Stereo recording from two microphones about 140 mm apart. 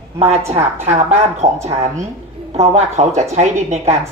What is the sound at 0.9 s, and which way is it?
Speech, 50° right (ahead or behind).